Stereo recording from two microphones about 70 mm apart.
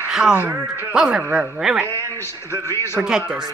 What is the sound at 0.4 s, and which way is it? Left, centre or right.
Speech, right.